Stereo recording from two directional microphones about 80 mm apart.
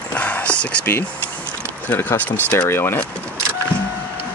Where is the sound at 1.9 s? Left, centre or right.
Left.